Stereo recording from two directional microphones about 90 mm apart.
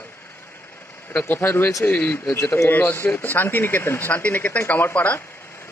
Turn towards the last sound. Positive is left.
turn(degrees=20)  # may be behind; listen again after turning